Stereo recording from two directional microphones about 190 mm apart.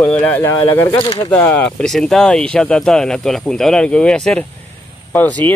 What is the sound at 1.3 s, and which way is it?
Speech, 10° left (ahead or behind).